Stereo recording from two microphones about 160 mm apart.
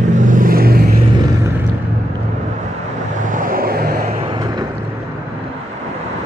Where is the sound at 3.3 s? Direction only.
60° right (ahead or behind).